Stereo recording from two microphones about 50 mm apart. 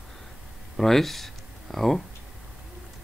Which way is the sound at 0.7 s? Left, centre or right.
Centre.